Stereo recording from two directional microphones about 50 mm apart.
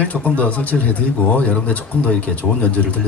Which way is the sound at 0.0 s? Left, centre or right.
Left.